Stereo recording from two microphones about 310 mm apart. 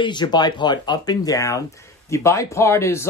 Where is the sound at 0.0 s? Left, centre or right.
Centre.